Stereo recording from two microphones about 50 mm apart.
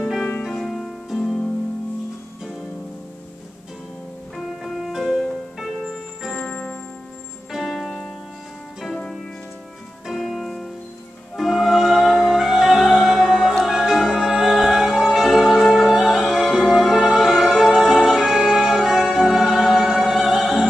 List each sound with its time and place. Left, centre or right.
0.4 s music: centre
4.4 s music: centre
6.3 s music: centre
7.6 s music: centre
8.8 s music: centre
10.0 s music: centre